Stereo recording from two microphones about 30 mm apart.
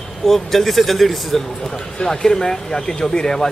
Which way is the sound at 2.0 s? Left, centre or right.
Centre.